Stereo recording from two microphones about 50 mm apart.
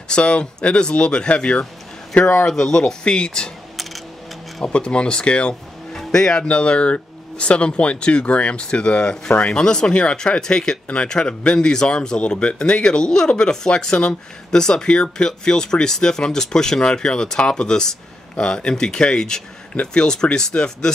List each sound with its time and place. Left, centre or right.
0.1 s speech: left
2.4 s speech: centre
4.7 s speech: centre